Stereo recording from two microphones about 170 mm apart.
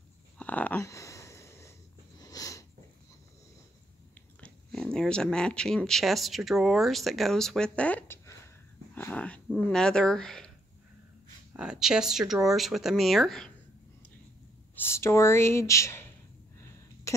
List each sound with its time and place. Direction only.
0.4 s a sound: 10° left (ahead or behind)
2.1 s sniff: 20° left (ahead or behind)
4.4 s speech: 5° left (ahead or behind)
8.9 s dog: 10° left (ahead or behind)
9.7 s speech: 5° left (ahead or behind)
11.5 s speech: 5° right (ahead or behind)
14.8 s speech: 15° left (ahead or behind)